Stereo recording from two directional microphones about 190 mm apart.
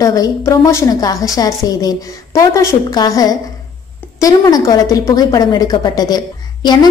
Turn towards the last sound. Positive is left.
turn(degrees=25)  # may be behind; listen again after turning